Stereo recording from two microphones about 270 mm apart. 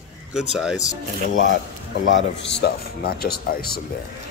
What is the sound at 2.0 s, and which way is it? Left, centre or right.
Speech, left.